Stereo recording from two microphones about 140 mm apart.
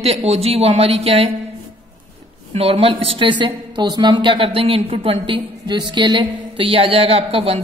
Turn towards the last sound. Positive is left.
turn(degrees=-45)  # may be behind; listen again after turning